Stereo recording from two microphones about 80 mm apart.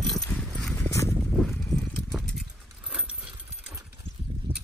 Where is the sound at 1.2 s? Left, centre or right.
Centre.